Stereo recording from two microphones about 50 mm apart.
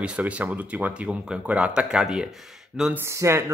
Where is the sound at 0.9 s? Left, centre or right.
Right.